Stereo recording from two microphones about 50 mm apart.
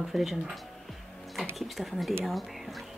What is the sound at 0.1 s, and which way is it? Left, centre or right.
Speech, centre.